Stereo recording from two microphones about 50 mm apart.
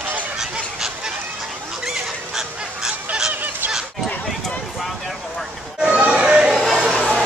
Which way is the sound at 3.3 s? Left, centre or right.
Right.